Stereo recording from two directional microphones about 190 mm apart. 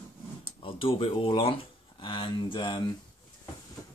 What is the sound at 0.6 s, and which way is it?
Speech, 30° left (ahead or behind).